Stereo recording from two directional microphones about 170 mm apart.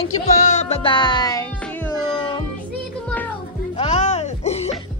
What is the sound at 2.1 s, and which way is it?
Music, 30° left (ahead or behind).